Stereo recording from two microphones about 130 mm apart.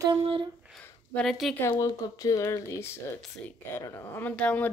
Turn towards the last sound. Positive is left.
turn(degrees=10)  # may be behind; listen again after turning